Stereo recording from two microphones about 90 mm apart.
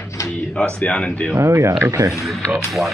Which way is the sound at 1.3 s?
30° right (ahead or behind).